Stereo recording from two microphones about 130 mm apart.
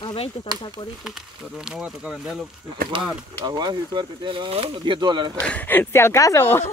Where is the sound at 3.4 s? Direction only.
35° right (ahead or behind).